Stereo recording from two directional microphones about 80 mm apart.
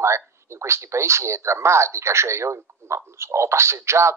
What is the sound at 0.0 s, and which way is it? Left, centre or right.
Speech, right.